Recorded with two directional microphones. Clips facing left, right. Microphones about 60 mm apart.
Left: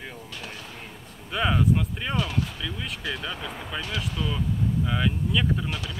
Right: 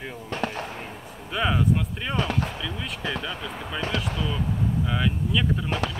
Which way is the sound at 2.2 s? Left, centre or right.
Right.